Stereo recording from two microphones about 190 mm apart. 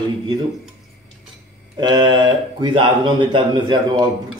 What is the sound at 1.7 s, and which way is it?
Speech, 25° right (ahead or behind).